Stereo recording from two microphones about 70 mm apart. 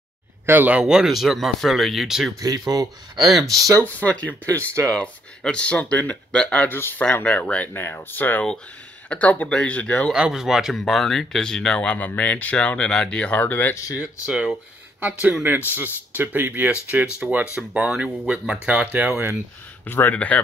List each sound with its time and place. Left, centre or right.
0.5 s speech: right
0.8 s speech: centre
2.4 s speech: right
3.4 s speech: right
3.8 s speech: left
4.6 s speech: right
4.9 s speech: centre
10.1 s speech: centre; by 13.7 s left
14.2 s speech: centre
15.0 s speech: right
18.5 s speech: right
19.8 s speech: left